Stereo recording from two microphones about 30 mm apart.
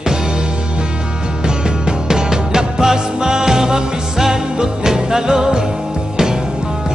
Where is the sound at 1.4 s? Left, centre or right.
Right.